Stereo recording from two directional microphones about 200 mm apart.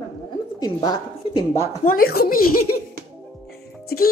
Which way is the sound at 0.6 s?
20° left (ahead or behind).